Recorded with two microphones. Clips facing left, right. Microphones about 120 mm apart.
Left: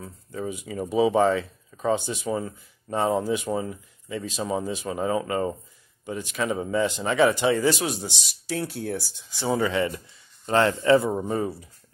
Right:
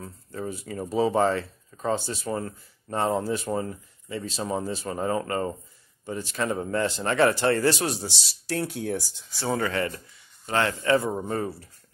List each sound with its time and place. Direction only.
0.0 s speech: centre (ahead or behind)
10.4 s speech: 25° left (ahead or behind)
11.0 s speech: centre (ahead or behind)
11.4 s speech: 20° left (ahead or behind)